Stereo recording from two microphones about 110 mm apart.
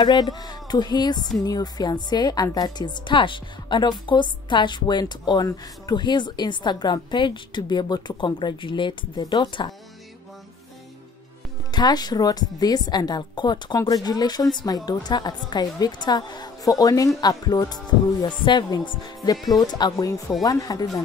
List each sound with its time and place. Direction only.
0.0 s a woman's voice: 40° left (ahead or behind)
11.7 s a woman's voice: 40° left (ahead or behind)
19.3 s speech: centre (ahead or behind)
19.6 s a woman's voice: 40° left (ahead or behind)